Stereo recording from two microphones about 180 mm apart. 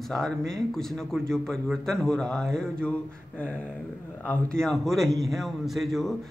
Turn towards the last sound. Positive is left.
turn(degrees=0)  # may be behind; listen again after turning